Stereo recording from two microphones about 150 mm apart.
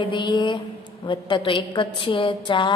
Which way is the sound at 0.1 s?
30° left (ahead or behind).